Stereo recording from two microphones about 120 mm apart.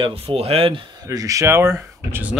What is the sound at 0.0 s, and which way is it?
Speech, 50° right (ahead or behind).